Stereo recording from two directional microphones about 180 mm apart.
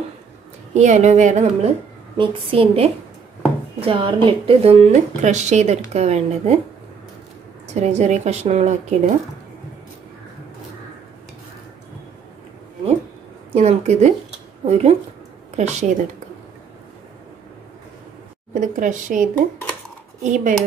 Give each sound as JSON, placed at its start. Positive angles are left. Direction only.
{"t": 0.7, "sound": "a woman's voice", "side_deg": -40}
{"t": 7.7, "sound": "a woman's voice", "side_deg": -40}
{"t": 13.6, "sound": "a woman's voice", "side_deg": -40}
{"t": 18.5, "sound": "speech", "side_deg": -45}
{"t": 20.2, "sound": "speech", "side_deg": -45}